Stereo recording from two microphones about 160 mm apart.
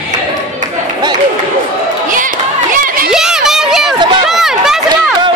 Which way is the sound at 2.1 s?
55° right (ahead or behind).